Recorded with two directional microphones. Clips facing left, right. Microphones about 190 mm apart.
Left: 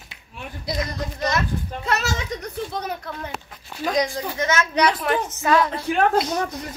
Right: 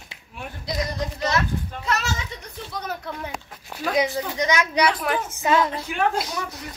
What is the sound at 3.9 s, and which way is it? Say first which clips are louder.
A woman's voice: right 1 dB; 5° right (ahead or behind).